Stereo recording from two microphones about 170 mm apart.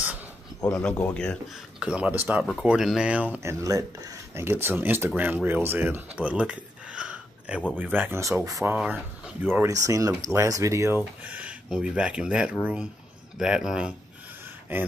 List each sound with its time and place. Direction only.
0.6 s speech: 20° left (ahead or behind)
1.8 s speech: 5° right (ahead or behind)
8.7 s speech: 5° right (ahead or behind)